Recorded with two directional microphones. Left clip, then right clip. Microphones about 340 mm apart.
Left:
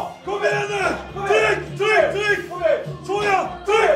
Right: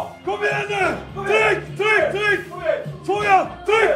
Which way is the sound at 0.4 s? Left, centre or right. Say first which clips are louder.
Left 1 dB; centre.